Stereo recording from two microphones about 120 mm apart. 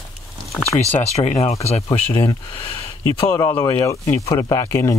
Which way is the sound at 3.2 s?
35° left (ahead or behind).